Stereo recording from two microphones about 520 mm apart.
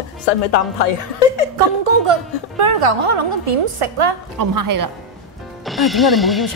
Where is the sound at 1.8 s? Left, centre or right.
Right.